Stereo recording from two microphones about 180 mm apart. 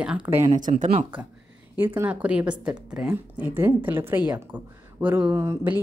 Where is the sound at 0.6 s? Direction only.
40° right (ahead or behind).